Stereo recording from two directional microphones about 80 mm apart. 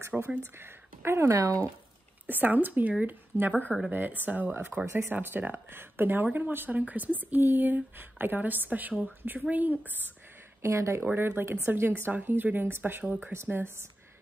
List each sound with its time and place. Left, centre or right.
0.1 s speech: centre
0.6 s speech: right
10.6 s speech: right
13.0 s speech: centre
13.3 s speech: right